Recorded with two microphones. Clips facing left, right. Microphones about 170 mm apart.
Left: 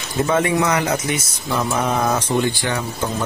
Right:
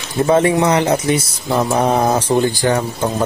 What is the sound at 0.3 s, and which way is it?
Speech, 30° right (ahead or behind).